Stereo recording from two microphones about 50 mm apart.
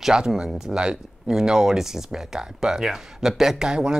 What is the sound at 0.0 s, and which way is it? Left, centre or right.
Speech, centre.